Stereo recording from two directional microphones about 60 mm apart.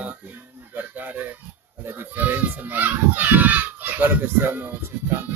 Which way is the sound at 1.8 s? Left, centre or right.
Right.